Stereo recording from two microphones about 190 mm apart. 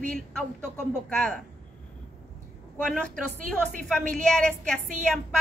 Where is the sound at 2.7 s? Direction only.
5° left (ahead or behind).